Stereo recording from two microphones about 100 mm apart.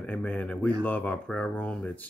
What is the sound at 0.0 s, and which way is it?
Speech, 15° left (ahead or behind).